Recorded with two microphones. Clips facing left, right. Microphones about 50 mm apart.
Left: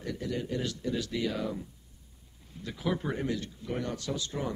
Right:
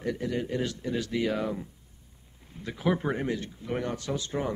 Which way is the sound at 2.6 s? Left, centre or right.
Right.